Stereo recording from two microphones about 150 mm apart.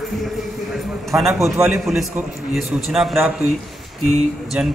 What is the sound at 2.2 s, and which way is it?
A man's voice, 10° right (ahead or behind).